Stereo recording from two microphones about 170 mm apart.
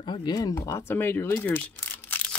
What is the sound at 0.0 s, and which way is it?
Speech, 25° left (ahead or behind).